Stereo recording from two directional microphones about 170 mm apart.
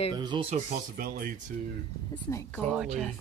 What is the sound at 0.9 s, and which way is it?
Speech, 55° right (ahead or behind).